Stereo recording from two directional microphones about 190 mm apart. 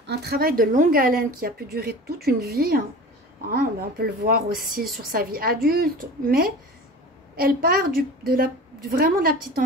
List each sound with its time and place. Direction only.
0.0 s a woman's voice: 60° right (ahead or behind)